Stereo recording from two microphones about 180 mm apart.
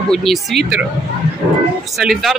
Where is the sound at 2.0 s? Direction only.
Centre (ahead or behind).